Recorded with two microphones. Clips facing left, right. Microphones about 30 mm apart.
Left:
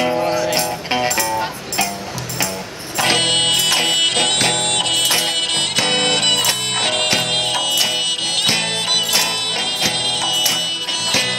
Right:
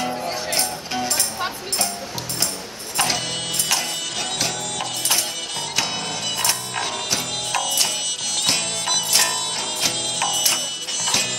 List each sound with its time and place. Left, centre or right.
0.0 s music: left
0.3 s music: left
3.0 s music: left
7.5 s music: left
10.0 s music: left